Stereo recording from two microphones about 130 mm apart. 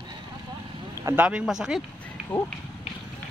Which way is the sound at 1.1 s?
10° right (ahead or behind).